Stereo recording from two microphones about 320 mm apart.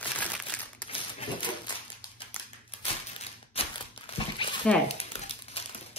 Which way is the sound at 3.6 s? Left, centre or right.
Centre.